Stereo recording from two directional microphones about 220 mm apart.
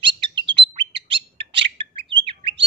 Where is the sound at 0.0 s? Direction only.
20° right (ahead or behind).